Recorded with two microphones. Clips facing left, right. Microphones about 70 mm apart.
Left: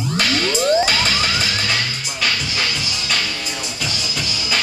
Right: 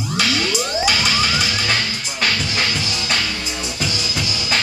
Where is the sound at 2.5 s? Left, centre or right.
Right.